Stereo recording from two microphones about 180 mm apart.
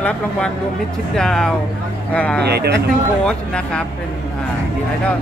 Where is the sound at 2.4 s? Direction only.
65° right (ahead or behind).